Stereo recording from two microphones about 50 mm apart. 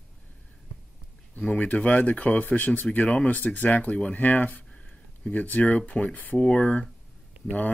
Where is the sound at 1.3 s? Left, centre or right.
Left.